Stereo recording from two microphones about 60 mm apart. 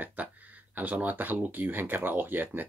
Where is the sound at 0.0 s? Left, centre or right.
Right.